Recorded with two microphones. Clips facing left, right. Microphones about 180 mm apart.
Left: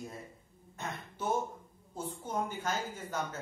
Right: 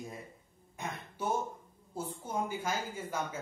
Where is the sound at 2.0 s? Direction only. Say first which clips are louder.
Even; 10° right (ahead or behind).